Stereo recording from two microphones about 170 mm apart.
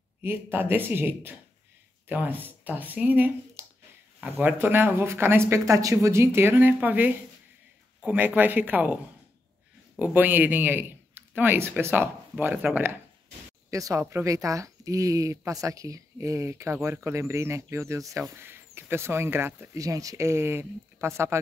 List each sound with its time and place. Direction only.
0.2 s speech: 15° right (ahead or behind)